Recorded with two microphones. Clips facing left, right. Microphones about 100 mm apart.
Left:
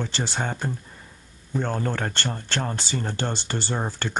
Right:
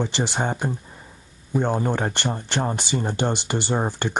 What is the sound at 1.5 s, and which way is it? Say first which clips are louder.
Speech: right 4 dB; 15° right (ahead or behind).